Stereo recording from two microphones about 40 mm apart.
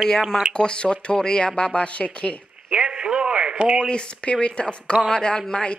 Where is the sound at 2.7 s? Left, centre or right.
Right.